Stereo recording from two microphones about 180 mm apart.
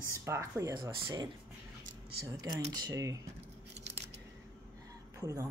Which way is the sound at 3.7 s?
35° right (ahead or behind).